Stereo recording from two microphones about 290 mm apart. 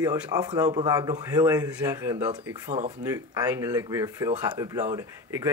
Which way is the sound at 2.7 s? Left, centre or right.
Right.